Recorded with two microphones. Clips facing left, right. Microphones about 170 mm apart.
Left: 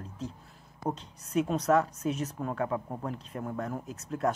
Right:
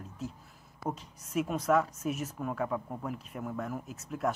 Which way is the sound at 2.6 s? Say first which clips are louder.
Left 2 dB; 10° left (ahead or behind).